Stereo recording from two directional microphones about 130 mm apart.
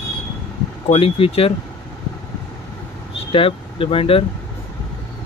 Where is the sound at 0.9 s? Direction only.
50° left (ahead or behind).